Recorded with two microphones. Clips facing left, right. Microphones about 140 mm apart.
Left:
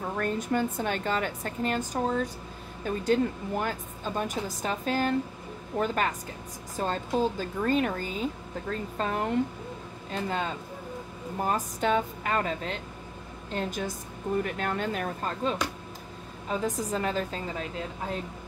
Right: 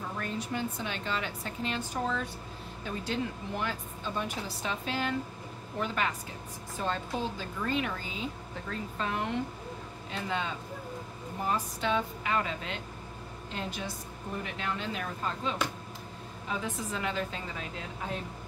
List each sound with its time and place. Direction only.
0.2 s a woman's voice: 50° left (ahead or behind)